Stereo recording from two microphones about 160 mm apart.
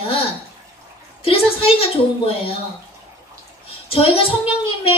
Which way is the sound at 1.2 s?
35° left (ahead or behind).